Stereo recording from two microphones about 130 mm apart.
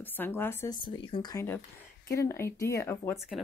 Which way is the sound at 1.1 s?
30° left (ahead or behind).